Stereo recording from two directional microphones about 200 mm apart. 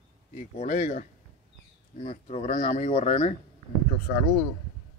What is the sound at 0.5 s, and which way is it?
Speech, 40° left (ahead or behind).